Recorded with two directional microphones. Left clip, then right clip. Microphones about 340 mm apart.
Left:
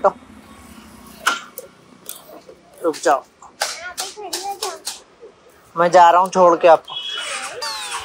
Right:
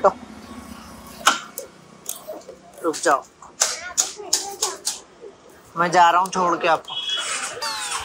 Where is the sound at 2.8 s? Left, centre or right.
Centre.